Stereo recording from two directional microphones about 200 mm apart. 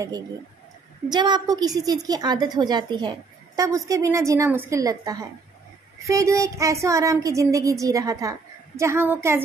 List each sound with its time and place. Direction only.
1.1 s a woman's voice: 20° right (ahead or behind)